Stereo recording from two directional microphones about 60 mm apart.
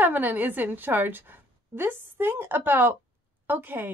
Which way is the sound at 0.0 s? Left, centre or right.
Right.